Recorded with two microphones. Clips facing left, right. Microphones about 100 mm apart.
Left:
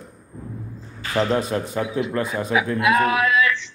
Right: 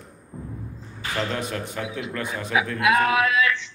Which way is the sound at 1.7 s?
25° left (ahead or behind).